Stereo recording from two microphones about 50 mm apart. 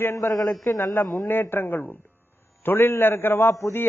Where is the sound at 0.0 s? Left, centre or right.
Left.